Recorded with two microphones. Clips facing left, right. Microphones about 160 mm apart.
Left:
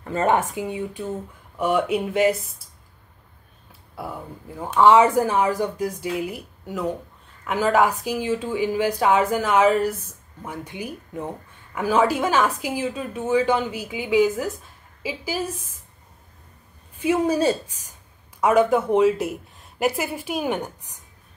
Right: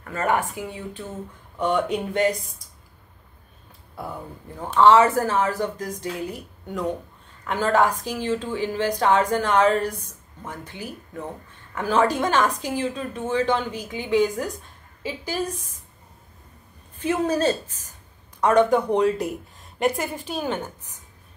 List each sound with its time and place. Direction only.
0.0 s speech: 25° left (ahead or behind); by 2.3 s 5° left (ahead or behind)
3.9 s speech: 5° left (ahead or behind)
17.0 s speech: 10° left (ahead or behind)